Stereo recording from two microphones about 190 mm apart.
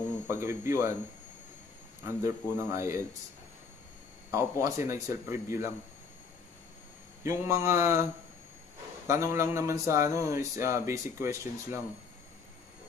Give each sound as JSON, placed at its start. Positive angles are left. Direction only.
{"t": 0.3, "sound": "speech", "side_deg": -15}
{"t": 2.2, "sound": "speech", "side_deg": -15}
{"t": 4.3, "sound": "speech", "side_deg": -15}
{"t": 7.2, "sound": "speech", "side_deg": -15}